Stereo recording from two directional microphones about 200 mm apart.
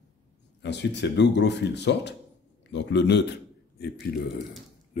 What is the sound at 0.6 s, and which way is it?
Speech, 60° left (ahead or behind).